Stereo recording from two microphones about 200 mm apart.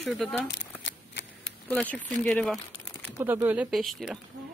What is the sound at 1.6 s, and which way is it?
Speech, 5° left (ahead or behind).